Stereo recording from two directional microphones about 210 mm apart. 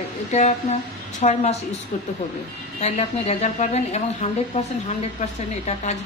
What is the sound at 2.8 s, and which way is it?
Speech, 30° left (ahead or behind).